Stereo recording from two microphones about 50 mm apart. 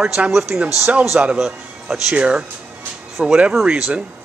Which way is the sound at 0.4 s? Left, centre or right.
Centre.